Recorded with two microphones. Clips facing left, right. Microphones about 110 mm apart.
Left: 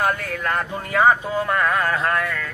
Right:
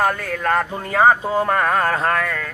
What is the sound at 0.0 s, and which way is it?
Speech, 40° right (ahead or behind).